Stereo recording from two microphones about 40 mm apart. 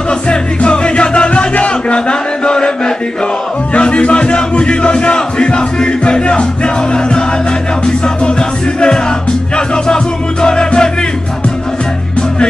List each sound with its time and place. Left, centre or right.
0.3 s music: left
1.7 s a sound: left
3.7 s music: left